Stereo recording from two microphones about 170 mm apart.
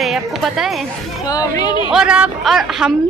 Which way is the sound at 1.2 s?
20° left (ahead or behind).